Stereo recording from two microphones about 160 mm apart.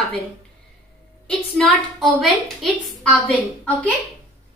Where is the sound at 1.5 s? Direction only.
Centre (ahead or behind).